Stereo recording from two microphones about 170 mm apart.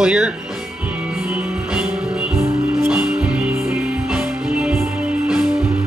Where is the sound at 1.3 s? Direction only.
5° right (ahead or behind).